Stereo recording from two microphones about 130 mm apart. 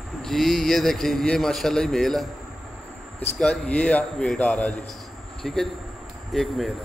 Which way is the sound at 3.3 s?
5° left (ahead or behind).